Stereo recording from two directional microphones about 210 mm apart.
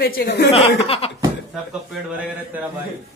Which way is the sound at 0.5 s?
25° left (ahead or behind).